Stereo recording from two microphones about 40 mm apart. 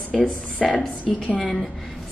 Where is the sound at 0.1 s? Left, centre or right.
Centre.